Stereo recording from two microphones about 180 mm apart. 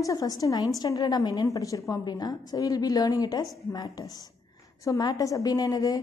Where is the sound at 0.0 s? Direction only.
20° left (ahead or behind).